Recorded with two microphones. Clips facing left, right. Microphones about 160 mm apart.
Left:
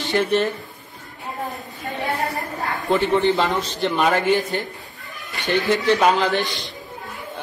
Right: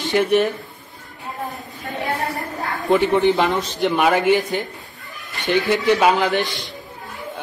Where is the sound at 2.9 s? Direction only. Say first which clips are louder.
Right 2 dB; 15° right (ahead or behind).